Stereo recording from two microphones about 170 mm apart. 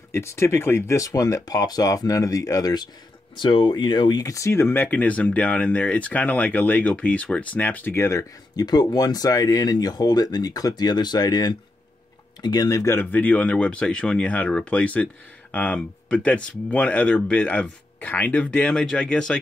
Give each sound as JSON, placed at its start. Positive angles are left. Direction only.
{"t": 0.1, "sound": "speech", "side_deg": 15}